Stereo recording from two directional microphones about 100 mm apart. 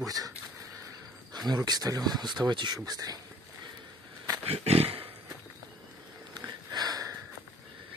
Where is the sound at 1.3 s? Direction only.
45° right (ahead or behind).